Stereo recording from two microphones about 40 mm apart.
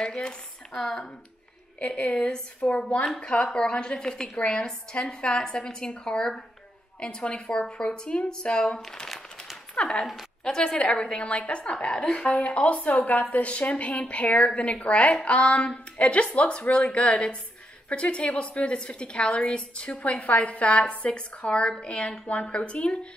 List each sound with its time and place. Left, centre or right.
0.0 s a woman's voice: left
1.8 s a woman's voice: left
2.0 s a woman's voice: centre
12.4 s a woman's voice: left